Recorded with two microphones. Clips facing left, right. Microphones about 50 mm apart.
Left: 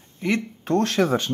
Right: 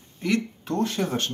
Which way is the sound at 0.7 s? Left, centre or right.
Left.